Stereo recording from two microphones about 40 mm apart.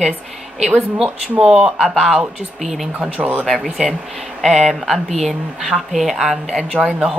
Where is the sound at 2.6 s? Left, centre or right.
Centre.